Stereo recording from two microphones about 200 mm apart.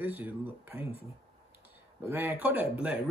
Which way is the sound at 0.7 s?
30° left (ahead or behind).